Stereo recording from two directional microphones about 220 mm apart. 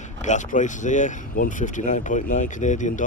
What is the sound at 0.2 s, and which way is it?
Speech, 35° left (ahead or behind).